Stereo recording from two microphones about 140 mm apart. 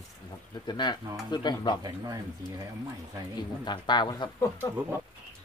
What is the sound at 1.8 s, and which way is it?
Speech, 25° right (ahead or behind).